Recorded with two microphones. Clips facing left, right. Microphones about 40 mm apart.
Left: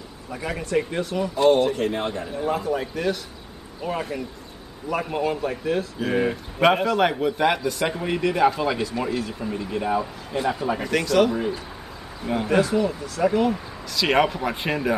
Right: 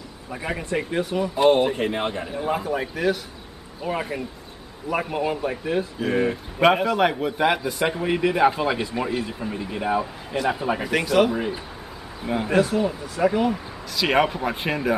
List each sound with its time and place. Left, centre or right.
0.3 s a man's voice: centre
5.1 s a man's voice: centre
5.9 s a man's voice: centre
12.4 s speech: right
12.7 s speech: centre